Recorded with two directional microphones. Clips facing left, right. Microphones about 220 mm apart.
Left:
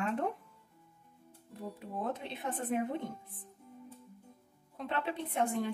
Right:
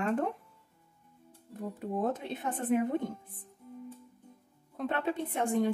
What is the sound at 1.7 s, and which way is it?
Speech, 45° right (ahead or behind).